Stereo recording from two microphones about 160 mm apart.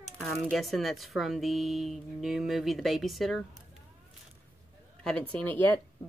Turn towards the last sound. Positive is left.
turn(degrees=10)  # may be behind; listen again after turning